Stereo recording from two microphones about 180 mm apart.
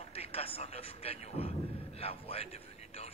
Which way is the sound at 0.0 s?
35° left (ahead or behind).